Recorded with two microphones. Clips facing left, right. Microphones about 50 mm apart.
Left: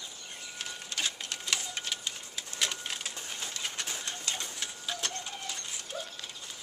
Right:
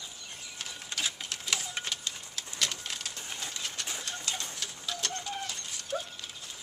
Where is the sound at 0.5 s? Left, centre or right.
Centre.